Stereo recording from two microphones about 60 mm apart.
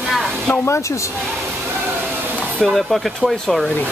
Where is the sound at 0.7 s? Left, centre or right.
Left.